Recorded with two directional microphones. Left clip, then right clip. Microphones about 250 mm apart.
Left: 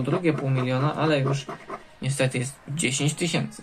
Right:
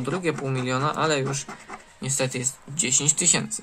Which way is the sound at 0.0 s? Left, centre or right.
Right.